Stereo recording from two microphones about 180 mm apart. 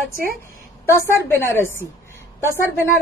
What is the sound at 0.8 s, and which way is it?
A woman's voice, 10° left (ahead or behind).